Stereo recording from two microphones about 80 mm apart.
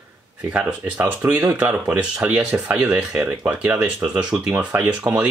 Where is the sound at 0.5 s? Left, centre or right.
Centre.